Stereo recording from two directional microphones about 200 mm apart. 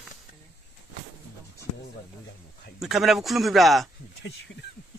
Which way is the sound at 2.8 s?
Centre (ahead or behind).